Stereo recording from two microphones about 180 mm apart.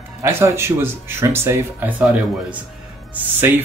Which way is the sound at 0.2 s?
15° right (ahead or behind).